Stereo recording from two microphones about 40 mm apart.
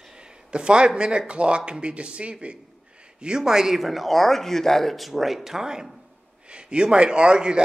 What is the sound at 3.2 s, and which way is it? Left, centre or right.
Speech, centre.